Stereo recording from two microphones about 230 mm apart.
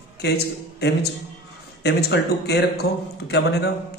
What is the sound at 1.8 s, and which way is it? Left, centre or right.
A man's voice, left.